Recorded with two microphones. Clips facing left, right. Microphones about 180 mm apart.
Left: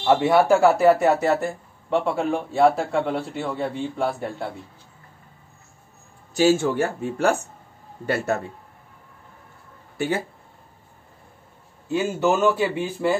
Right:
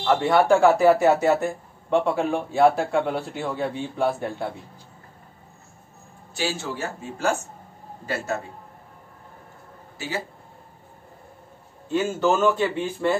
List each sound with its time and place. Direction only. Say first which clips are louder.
0.0 s speech: left 2 dB; 10° left (ahead or behind)
6.3 s speech: left 10 dB; 50° left (ahead or behind)
9.9 s speech: left 6 dB; 55° left (ahead or behind)
11.9 s speech: even; 10° left (ahead or behind)